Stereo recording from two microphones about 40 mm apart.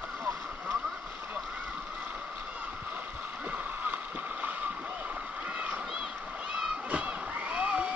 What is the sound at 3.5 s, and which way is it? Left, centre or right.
Rowboat, right.